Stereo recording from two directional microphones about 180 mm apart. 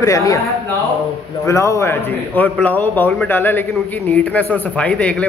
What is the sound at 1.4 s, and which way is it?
A man's voice, 15° left (ahead or behind).